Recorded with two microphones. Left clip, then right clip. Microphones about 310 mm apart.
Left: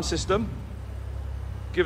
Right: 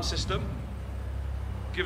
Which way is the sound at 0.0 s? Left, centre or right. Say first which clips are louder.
Left 6 dB; centre.